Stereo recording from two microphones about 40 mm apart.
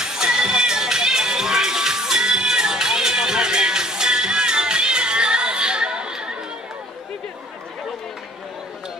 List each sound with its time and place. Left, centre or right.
0.0 s music: centre